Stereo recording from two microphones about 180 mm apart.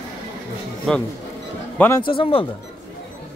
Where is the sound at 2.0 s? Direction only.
30° left (ahead or behind).